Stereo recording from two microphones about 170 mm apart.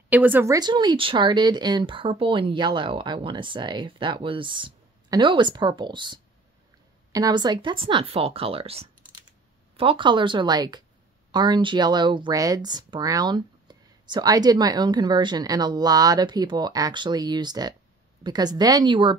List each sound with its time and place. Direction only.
0.1 s a woman's voice: 10° right (ahead or behind)
0.6 s speech: 25° right (ahead or behind)